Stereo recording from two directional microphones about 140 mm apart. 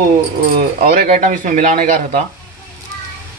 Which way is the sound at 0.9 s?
70° right (ahead or behind).